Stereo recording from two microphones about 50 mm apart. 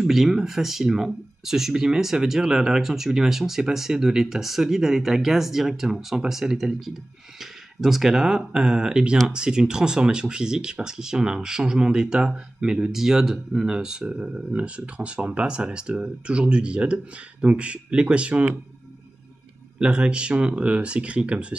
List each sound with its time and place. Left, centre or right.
0.0 s speech: centre; by 18.5 s right
19.8 s speech: right